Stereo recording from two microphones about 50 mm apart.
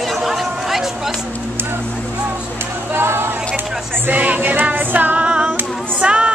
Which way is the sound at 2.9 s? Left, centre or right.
Right.